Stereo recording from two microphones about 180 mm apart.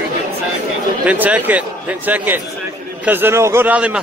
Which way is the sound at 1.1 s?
10° right (ahead or behind).